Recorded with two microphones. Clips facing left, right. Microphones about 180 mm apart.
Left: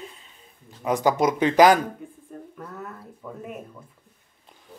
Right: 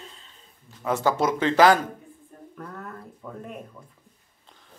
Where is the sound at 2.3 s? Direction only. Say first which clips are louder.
Left 7 dB; 75° left (ahead or behind).